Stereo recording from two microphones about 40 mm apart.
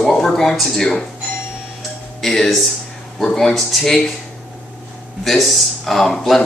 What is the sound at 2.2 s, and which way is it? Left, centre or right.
Speech, centre.